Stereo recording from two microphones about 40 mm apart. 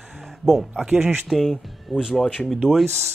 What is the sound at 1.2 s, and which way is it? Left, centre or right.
Speech, centre.